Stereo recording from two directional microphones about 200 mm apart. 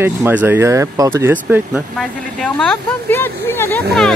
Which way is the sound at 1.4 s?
5° right (ahead or behind).